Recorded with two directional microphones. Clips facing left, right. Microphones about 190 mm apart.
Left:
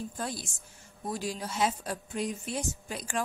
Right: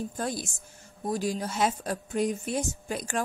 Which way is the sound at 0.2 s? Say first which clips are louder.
Right 4 dB; 50° right (ahead or behind).